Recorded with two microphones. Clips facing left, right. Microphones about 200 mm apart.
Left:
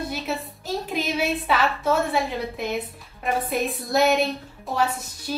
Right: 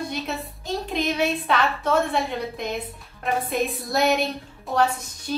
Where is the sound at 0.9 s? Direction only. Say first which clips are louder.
Right 2 dB; 5° left (ahead or behind).